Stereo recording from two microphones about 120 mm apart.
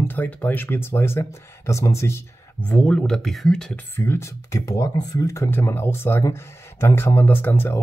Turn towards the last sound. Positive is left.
turn(degrees=20)  # may be behind; listen again after turning